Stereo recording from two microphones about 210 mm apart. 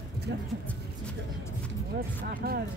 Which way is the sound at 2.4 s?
45° right (ahead or behind).